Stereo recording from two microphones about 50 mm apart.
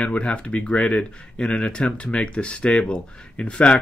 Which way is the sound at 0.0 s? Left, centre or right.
Left.